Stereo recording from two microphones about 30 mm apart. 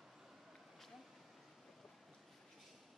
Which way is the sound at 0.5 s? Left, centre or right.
Centre.